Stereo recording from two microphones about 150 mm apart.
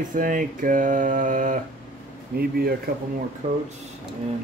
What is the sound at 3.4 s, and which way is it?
Speech, 45° right (ahead or behind).